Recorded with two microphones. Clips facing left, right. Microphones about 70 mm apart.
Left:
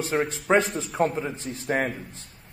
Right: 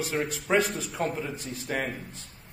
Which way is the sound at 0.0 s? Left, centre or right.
Left.